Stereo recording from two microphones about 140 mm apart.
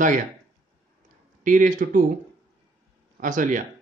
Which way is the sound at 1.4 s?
70° right (ahead or behind).